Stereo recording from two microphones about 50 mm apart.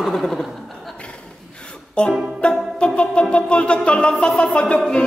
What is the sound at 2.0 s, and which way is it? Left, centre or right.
Music, left.